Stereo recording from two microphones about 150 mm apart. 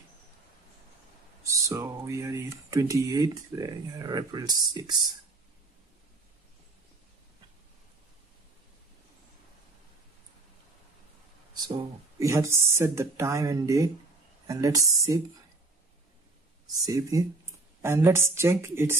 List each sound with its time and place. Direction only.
1.4 s speech: 20° right (ahead or behind)
11.5 s speech: 25° right (ahead or behind)
16.8 s a woman's voice: 20° right (ahead or behind)